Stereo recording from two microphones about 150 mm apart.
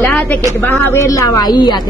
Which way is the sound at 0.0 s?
15° left (ahead or behind).